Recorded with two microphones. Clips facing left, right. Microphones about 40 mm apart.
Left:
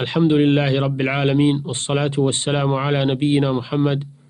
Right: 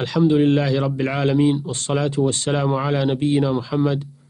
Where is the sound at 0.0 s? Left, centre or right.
Left.